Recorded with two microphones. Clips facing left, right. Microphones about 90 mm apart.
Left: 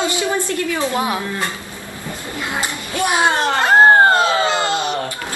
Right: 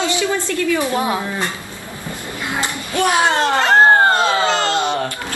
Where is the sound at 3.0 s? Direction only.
20° left (ahead or behind).